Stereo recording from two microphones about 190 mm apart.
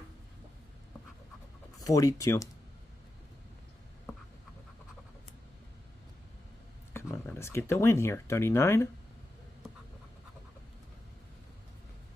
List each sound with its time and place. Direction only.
1.8 s speech: 20° left (ahead or behind)
6.9 s speech: 15° left (ahead or behind)